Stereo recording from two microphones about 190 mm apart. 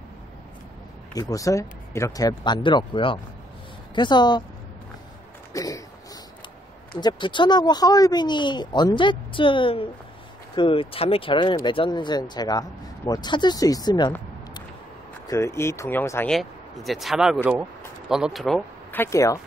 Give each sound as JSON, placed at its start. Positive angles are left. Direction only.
{"t": 1.1, "sound": "speech", "side_deg": 20}
{"t": 5.5, "sound": "a sound", "side_deg": 20}
{"t": 7.0, "sound": "speech", "side_deg": 25}
{"t": 15.2, "sound": "speech", "side_deg": 15}
{"t": 16.3, "sound": "speech", "side_deg": 0}